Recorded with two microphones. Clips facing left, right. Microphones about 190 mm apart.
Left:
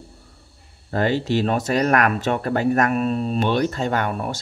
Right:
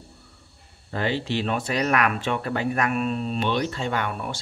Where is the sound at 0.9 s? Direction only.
45° left (ahead or behind).